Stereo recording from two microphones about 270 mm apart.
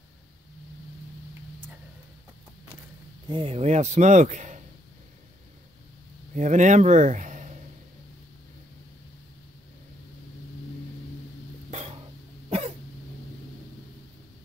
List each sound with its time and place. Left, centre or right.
3.3 s speech: centre
6.3 s speech: right
11.7 s a sound: right
12.4 s cough: right